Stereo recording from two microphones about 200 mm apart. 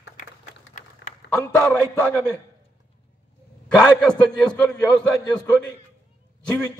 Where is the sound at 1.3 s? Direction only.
5° left (ahead or behind).